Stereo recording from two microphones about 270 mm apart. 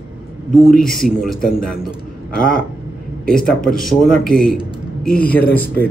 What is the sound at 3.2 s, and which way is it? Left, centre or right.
Speech, centre.